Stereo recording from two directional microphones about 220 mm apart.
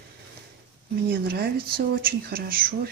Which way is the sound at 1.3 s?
45° right (ahead or behind).